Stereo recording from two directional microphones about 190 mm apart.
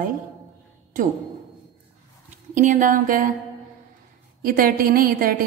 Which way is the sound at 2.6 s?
40° right (ahead or behind).